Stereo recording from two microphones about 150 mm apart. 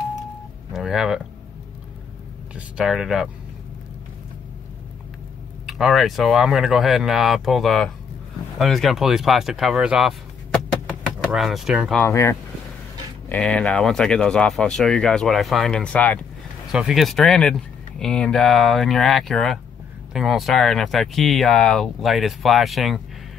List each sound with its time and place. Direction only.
0.7 s speech: centre (ahead or behind)
2.5 s speech: 5° right (ahead or behind)
5.7 s speech: centre (ahead or behind)
10.9 s a sound: centre (ahead or behind)
11.9 s speech: 15° left (ahead or behind)
13.3 s speech: 5° left (ahead or behind)
16.7 s speech: centre (ahead or behind)